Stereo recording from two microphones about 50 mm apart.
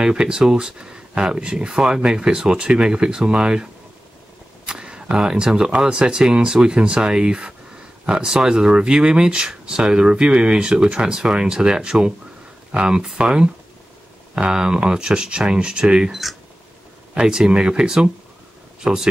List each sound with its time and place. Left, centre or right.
0.0 s speech: centre
4.6 s speech: centre